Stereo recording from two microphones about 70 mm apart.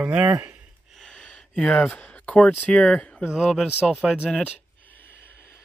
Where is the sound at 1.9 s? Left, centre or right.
Left.